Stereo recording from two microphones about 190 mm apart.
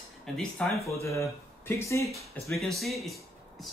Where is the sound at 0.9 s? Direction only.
15° left (ahead or behind).